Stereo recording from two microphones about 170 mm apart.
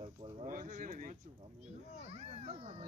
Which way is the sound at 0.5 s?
55° right (ahead or behind).